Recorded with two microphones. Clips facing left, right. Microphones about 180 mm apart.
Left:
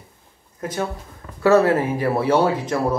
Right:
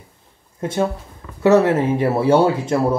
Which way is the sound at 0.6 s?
25° right (ahead or behind).